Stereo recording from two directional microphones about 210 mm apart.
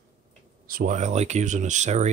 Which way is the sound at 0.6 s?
40° right (ahead or behind).